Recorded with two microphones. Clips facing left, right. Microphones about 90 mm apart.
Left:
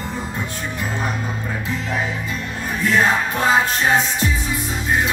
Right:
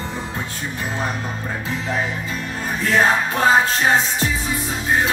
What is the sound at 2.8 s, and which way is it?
Music, 35° right (ahead or behind).